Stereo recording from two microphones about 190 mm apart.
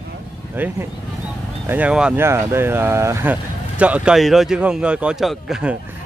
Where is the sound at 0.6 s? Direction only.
10° right (ahead or behind).